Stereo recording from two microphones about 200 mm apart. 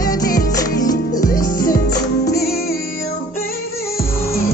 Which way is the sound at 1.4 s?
45° left (ahead or behind).